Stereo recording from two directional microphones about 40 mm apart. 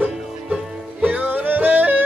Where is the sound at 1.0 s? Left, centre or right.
Right.